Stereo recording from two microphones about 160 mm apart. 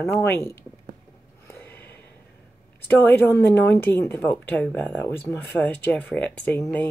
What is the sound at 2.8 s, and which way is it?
Speech, 10° left (ahead or behind).